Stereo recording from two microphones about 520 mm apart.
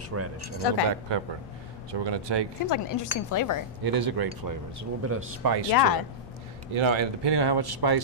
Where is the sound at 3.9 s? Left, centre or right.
Right.